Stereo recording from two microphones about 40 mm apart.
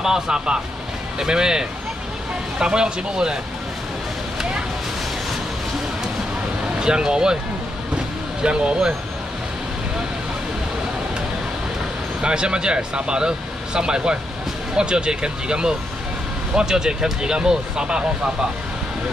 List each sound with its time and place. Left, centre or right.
0.0 s speech: centre
6.8 s speech: centre
8.4 s speech: right
12.2 s speech: right